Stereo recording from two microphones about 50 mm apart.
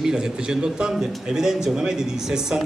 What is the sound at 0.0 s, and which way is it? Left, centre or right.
A man's voice, centre.